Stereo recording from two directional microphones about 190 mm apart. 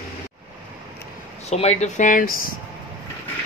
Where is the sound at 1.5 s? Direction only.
35° left (ahead or behind).